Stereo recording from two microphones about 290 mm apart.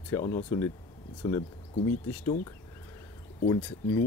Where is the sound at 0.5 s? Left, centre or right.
Centre.